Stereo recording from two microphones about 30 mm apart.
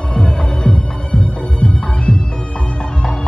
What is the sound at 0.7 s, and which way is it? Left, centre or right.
Music, left.